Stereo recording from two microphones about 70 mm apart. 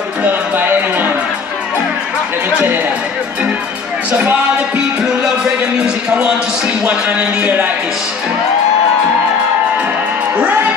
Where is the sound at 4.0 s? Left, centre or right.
Centre.